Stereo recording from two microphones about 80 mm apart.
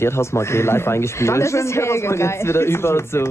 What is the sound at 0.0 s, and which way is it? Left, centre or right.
Speech, left.